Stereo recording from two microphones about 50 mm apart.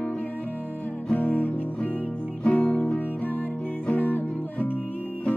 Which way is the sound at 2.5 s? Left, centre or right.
Left.